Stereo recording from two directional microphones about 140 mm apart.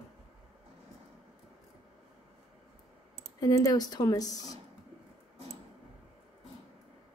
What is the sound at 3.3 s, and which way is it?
Speech, 25° left (ahead or behind).